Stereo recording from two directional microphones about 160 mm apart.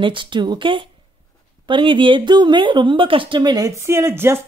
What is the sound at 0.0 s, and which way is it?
Speech, 30° right (ahead or behind).